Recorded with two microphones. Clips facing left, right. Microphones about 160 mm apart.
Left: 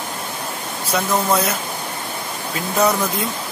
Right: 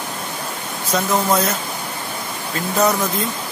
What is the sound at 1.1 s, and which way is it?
Speech, 10° right (ahead or behind).